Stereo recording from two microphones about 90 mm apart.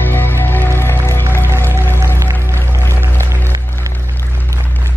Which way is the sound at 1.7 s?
25° right (ahead or behind).